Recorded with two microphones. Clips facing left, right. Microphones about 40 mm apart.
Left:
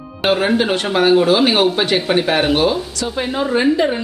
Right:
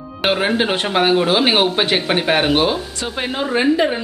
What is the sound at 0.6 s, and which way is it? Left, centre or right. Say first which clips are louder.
Speech: left 1 dB; centre.